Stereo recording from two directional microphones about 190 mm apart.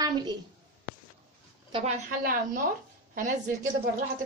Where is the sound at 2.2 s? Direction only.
50° right (ahead or behind).